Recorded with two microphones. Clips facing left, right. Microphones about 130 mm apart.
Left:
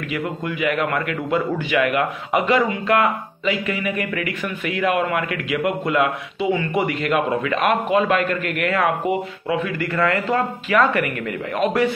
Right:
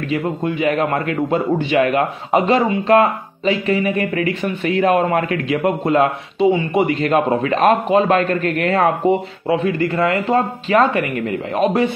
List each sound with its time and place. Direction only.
0.1 s a man's voice: 25° right (ahead or behind)